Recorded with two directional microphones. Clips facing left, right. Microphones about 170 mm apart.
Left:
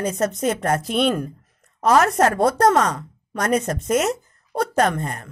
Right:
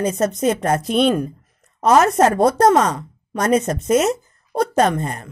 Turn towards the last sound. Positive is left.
turn(degrees=-20)  # may be behind; listen again after turning